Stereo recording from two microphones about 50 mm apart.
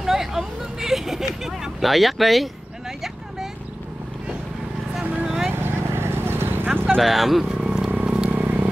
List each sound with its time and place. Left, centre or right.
0.0 s vehicle: centre
5.2 s vehicle: centre
5.5 s vehicle: right
7.0 s speech: centre
7.4 s vehicle: centre
8.4 s vehicle: right